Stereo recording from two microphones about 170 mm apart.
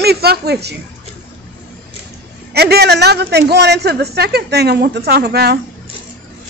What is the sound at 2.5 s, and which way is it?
A man's voice, 70° right (ahead or behind).